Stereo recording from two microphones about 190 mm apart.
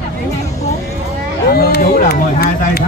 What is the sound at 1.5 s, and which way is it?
Speech, 55° left (ahead or behind).